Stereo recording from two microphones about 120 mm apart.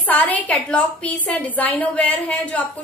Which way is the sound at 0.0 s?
15° left (ahead or behind).